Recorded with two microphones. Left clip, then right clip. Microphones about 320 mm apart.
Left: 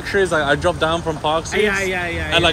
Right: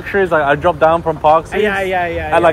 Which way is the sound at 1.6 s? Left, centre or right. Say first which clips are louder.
Right 4 dB; right.